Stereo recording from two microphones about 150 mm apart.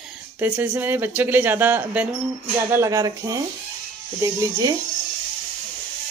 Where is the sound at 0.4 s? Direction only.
10° right (ahead or behind).